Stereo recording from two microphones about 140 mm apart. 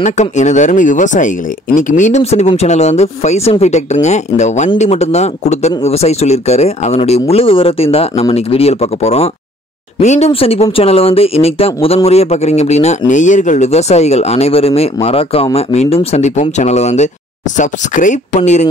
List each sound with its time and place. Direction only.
0.0 s speech: 60° left (ahead or behind)
17.6 s speech: 65° left (ahead or behind)